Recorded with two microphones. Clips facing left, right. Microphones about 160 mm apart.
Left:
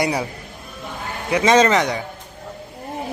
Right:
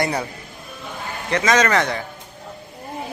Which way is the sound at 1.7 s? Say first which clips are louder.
Left 1 dB; 15° left (ahead or behind).